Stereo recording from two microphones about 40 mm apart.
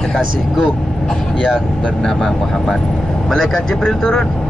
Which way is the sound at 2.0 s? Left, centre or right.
Centre.